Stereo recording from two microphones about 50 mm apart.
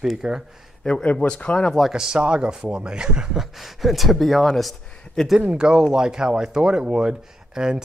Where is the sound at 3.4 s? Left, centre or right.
Centre.